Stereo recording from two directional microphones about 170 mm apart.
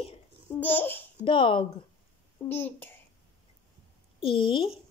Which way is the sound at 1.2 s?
30° left (ahead or behind).